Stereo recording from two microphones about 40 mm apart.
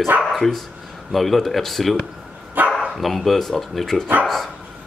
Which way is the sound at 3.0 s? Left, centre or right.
Centre.